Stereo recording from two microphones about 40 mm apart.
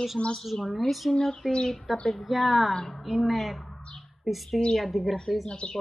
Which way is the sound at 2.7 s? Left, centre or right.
Centre.